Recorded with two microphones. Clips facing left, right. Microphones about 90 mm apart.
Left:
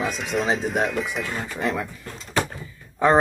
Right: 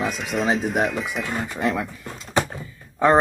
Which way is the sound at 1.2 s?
15° right (ahead or behind).